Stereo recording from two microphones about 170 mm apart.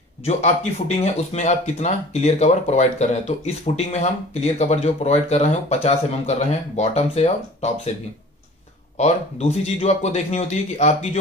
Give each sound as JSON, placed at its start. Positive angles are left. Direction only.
{"t": 0.2, "sound": "speech", "side_deg": 40}
{"t": 8.9, "sound": "speech", "side_deg": 40}